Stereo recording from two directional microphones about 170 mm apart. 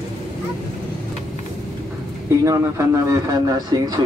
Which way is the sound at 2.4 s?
20° right (ahead or behind).